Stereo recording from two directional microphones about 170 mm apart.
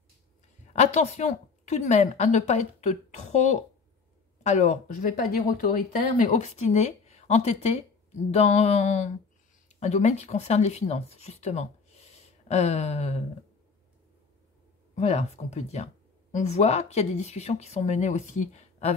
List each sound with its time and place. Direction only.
0.7 s a woman's voice: 40° left (ahead or behind)
15.0 s speech: 40° left (ahead or behind)